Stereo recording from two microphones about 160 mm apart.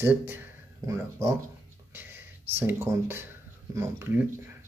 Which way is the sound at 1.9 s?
15° right (ahead or behind).